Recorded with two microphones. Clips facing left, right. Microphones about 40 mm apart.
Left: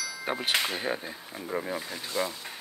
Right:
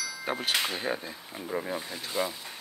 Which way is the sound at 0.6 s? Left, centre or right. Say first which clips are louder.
Left 1 dB; centre.